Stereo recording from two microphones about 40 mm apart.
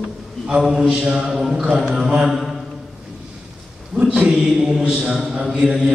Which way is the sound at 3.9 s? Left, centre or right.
Centre.